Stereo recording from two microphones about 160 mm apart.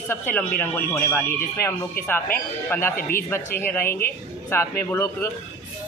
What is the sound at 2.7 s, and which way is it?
Speech, 10° left (ahead or behind).